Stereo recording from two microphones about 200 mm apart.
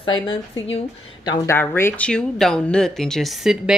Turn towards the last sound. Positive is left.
turn(degrees=0)  # may be behind; listen again after turning